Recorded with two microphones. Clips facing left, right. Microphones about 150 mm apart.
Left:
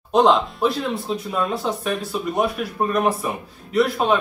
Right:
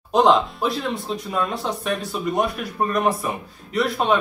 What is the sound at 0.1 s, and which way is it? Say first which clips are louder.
Speech: even; centre (ahead or behind).